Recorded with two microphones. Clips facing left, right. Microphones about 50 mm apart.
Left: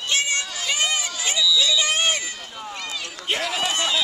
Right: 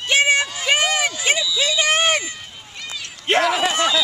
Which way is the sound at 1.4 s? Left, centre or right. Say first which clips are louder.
Left 1 dB; right.